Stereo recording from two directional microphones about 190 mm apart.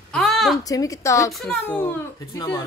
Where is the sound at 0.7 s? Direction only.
20° left (ahead or behind).